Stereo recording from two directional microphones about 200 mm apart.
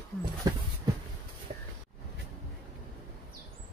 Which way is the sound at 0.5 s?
20° right (ahead or behind).